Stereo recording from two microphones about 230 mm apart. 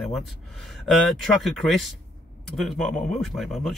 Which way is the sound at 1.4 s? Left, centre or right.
Centre.